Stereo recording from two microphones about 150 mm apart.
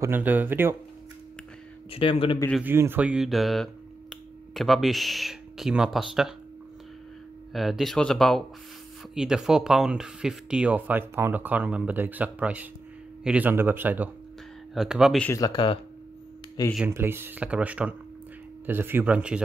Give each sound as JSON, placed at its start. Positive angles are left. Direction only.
{"t": 0.0, "sound": "speech", "side_deg": -15}
{"t": 1.9, "sound": "speech", "side_deg": 40}
{"t": 2.6, "sound": "speech", "side_deg": -15}
{"t": 7.5, "sound": "speech", "side_deg": 0}
{"t": 15.3, "sound": "speech", "side_deg": 30}
{"t": 16.9, "sound": "speech", "side_deg": -15}